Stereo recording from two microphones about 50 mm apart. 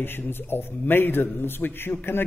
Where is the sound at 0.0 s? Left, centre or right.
Left.